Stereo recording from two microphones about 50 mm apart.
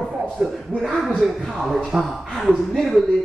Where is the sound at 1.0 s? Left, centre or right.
Centre.